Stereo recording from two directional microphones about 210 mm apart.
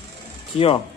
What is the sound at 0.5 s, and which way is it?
Speech, 25° left (ahead or behind).